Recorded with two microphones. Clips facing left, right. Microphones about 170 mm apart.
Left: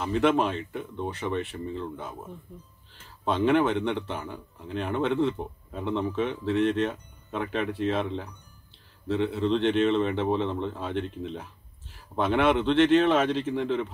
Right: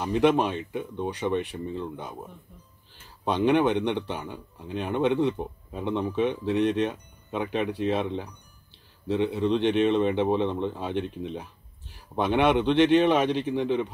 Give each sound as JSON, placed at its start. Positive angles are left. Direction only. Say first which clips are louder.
{"t": 0.0, "sound": "speech", "louder": "right 1 dB", "side_deg": -15}
{"t": 3.3, "sound": "speech", "louder": "right 1 dB", "side_deg": -15}